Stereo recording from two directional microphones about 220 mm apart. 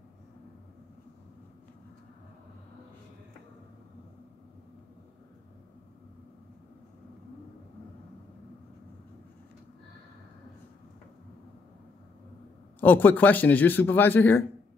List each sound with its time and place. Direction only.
12.8 s speech: 10° left (ahead or behind)